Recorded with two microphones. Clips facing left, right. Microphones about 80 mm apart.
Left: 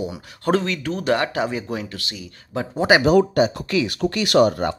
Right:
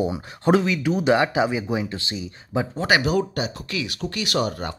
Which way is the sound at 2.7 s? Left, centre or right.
Centre.